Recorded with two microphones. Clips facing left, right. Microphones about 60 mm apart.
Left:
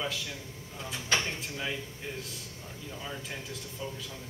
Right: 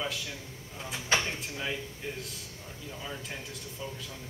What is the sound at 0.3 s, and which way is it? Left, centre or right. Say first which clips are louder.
Speech: even; centre.